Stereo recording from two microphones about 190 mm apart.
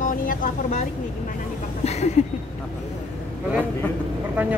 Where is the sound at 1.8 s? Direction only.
35° left (ahead or behind).